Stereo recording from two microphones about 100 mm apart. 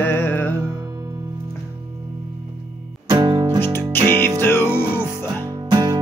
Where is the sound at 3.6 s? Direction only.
20° left (ahead or behind).